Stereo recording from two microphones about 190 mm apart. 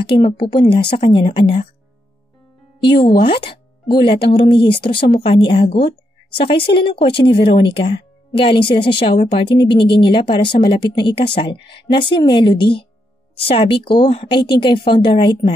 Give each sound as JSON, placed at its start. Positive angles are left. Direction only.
{"t": 0.0, "sound": "speech", "side_deg": 25}
{"t": 2.8, "sound": "a woman's voice", "side_deg": 25}